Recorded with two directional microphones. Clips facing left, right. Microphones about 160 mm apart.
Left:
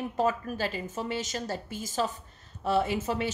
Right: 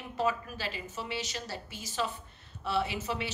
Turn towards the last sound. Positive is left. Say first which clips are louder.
# left 5 dB
turn(degrees=45)  # may be behind; listen again after turning